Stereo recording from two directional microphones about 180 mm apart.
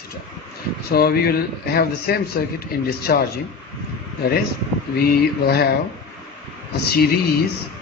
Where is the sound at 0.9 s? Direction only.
60° left (ahead or behind).